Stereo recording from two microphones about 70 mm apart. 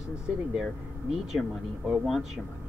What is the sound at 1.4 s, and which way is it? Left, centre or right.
Speech, left.